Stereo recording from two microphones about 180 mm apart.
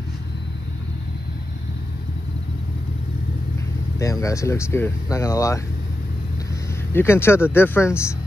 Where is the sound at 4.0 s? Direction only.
20° left (ahead or behind).